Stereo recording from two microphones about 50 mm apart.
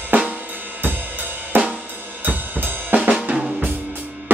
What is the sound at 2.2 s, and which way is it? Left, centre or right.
Drum kit, right.